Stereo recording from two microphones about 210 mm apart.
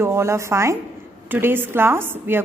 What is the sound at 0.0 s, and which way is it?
A woman's voice, 10° right (ahead or behind).